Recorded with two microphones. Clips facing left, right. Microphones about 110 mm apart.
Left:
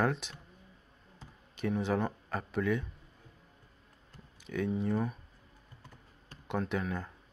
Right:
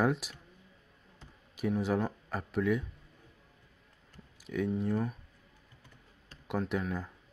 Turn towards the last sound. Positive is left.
turn(degrees=0)  # may be behind; listen again after turning